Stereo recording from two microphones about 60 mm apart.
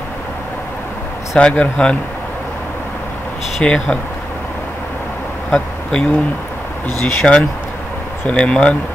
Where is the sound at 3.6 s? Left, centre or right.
Centre.